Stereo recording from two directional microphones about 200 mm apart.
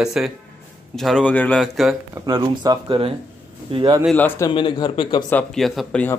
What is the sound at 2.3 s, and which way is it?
Speech, 20° right (ahead or behind).